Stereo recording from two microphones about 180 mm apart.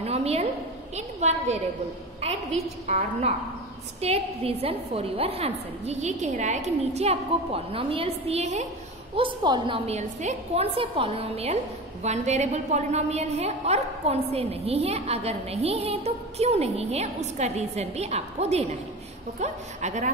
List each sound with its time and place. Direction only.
0.0 s a sound: 35° right (ahead or behind)
0.9 s a woman's voice: 40° right (ahead or behind)
9.1 s a woman's voice: 25° right (ahead or behind)
9.8 s a woman's voice: 35° right (ahead or behind)